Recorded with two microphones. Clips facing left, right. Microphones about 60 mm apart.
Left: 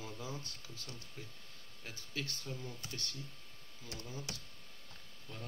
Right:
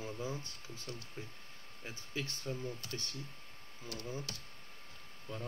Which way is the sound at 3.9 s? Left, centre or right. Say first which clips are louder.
Right 3 dB; right.